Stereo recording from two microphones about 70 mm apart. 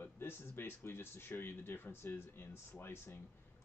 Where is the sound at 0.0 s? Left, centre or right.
Left.